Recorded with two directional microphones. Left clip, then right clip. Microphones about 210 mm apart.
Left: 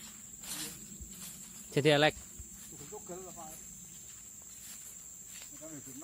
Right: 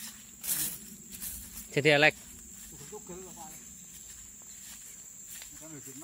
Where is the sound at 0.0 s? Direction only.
55° right (ahead or behind).